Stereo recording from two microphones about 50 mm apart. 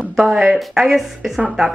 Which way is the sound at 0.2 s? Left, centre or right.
Centre.